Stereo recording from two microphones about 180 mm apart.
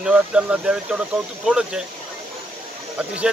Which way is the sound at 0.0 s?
5° right (ahead or behind).